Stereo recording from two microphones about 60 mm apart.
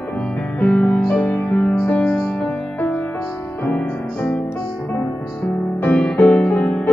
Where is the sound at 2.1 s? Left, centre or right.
Centre.